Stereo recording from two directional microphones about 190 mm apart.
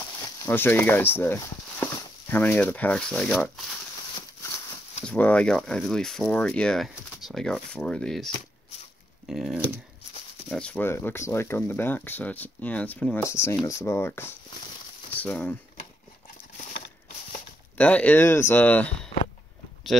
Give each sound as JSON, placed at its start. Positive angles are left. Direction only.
{"t": 0.2, "sound": "speech", "side_deg": 15}
{"t": 5.0, "sound": "speech", "side_deg": 5}
{"t": 9.3, "sound": "speech", "side_deg": 0}
{"t": 16.5, "sound": "a sound", "side_deg": 40}
{"t": 17.7, "sound": "speech", "side_deg": 5}